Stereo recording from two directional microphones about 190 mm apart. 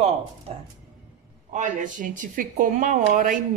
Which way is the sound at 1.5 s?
40° right (ahead or behind).